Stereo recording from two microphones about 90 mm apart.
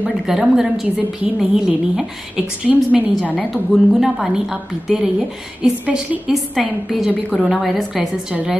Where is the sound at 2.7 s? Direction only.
20° right (ahead or behind).